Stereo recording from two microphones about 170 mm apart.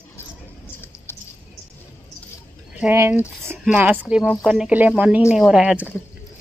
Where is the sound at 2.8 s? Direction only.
15° right (ahead or behind).